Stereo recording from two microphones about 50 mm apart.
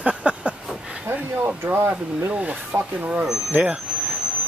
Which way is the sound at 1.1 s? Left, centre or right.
Right.